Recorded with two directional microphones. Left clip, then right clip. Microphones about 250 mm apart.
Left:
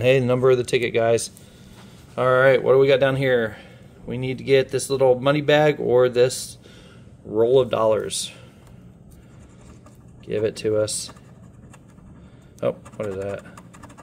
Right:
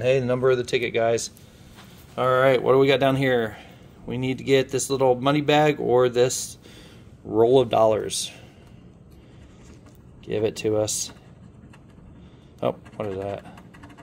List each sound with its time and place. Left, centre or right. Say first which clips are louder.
0.0 s a man's voice: left 3 dB; left; by 6.4 s centre
7.2 s speech: even; centre
10.2 s a man's voice: left 1 dB; centre
12.5 s speech: left 2 dB; centre